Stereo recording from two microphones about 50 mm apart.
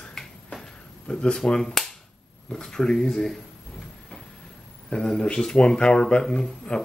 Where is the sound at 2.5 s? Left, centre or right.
Centre.